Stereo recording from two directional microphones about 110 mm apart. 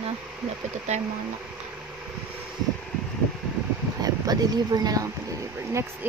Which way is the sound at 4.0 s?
35° right (ahead or behind).